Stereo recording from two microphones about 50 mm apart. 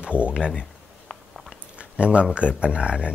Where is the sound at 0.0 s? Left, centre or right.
Right.